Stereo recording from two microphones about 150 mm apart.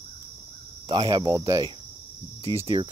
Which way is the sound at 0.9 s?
30° right (ahead or behind).